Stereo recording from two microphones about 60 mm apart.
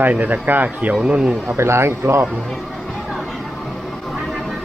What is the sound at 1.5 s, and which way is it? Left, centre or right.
Speech, right.